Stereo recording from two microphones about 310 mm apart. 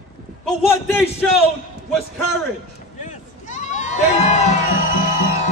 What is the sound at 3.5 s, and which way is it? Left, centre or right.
Crowd, left.